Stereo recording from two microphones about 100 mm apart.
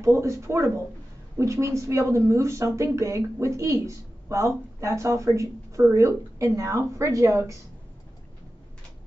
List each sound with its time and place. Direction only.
0.0 s a woman's voice: 30° right (ahead or behind)